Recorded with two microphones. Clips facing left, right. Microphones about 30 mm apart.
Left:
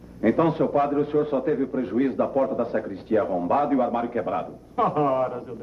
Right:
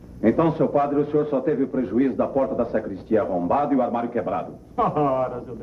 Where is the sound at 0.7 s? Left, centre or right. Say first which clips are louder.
Right 1 dB; centre.